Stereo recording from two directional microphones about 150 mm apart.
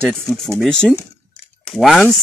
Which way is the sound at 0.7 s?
5° left (ahead or behind).